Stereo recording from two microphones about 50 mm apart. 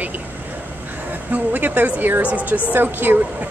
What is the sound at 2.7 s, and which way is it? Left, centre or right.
Speech, right.